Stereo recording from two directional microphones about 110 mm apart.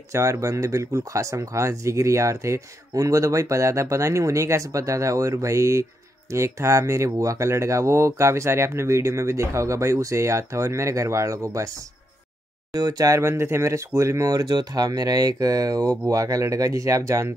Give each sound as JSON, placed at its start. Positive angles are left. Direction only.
{"t": 0.1, "sound": "speech", "side_deg": -25}
{"t": 12.7, "sound": "speech", "side_deg": -35}